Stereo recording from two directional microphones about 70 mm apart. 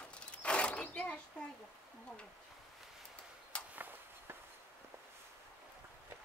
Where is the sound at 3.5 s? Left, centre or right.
Centre.